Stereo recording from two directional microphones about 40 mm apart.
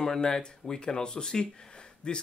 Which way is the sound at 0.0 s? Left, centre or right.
Centre.